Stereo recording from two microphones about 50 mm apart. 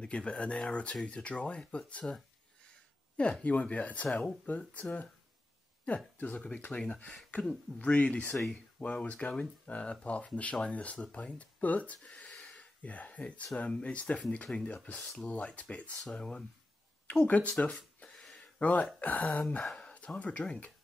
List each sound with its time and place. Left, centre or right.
0.0 s speech: left
3.2 s speech: left
6.1 s speech: left
12.5 s a sound: left
13.6 s speech: left
17.6 s a sound: centre
18.6 s speech: left
19.6 s speech: centre
20.2 s speech: left